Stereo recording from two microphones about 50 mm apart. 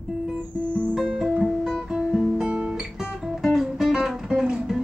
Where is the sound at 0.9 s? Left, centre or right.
Centre.